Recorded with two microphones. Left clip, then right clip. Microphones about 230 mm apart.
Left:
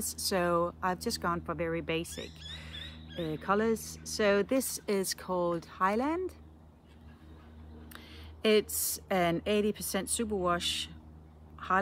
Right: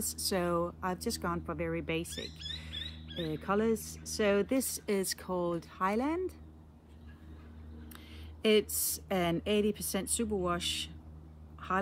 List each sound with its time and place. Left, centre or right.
0.0 s speech: centre
7.9 s a sound: centre
9.1 s speech: centre
11.6 s quack: centre